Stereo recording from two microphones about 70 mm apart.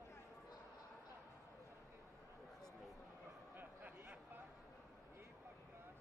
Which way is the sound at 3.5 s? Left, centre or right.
Right.